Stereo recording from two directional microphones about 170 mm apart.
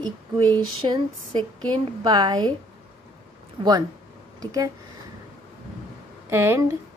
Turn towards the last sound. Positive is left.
turn(degrees=-15)  # may be behind; listen again after turning